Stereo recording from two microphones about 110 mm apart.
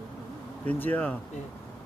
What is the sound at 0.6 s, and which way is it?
Speech, 15° left (ahead or behind).